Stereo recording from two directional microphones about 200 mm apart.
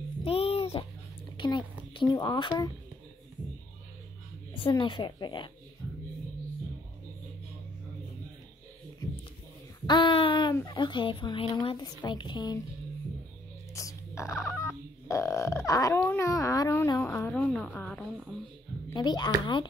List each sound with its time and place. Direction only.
0.2 s a sound: 30° left (ahead or behind)
2.0 s a woman's voice: 20° left (ahead or behind)
4.6 s a woman's voice: 25° left (ahead or behind)
9.8 s a woman's voice: 25° left (ahead or behind)
13.7 s music: 15° left (ahead or behind)
15.0 s a woman's voice: 15° left (ahead or behind)
18.9 s a woman's voice: 20° left (ahead or behind)